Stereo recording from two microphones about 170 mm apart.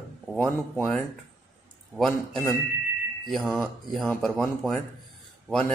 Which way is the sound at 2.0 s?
Centre (ahead or behind).